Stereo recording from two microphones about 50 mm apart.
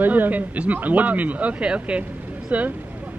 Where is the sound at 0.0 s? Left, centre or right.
Right.